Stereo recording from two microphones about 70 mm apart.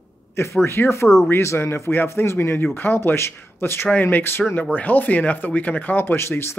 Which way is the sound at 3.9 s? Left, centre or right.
Left.